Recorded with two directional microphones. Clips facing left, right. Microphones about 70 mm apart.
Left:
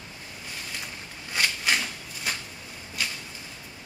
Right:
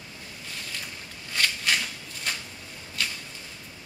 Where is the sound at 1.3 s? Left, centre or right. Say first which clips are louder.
Left 1 dB; centre.